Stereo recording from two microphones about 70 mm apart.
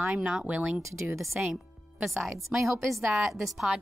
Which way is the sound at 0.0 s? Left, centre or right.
Centre.